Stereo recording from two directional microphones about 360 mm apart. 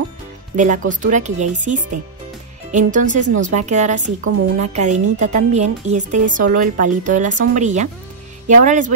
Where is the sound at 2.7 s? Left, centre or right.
Right.